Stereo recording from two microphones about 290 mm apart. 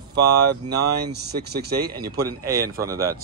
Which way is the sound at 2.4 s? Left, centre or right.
Centre.